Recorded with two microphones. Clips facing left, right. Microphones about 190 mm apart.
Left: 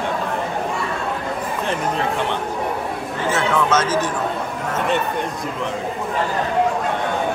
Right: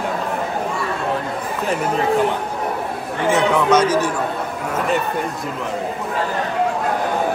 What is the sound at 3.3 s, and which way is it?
Speech, 15° right (ahead or behind).